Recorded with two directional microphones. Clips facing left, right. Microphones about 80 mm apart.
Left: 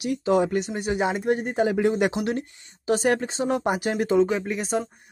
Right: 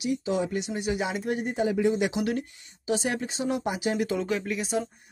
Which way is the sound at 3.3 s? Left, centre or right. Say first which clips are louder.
Left 4 dB; left.